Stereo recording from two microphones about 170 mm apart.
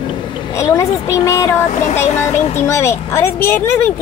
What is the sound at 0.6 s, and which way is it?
Speech, 15° left (ahead or behind).